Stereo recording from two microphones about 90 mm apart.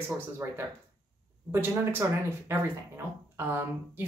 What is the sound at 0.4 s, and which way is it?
Speech, 25° right (ahead or behind).